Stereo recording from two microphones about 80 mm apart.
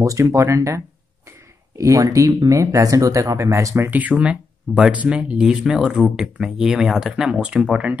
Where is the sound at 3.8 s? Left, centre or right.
Right.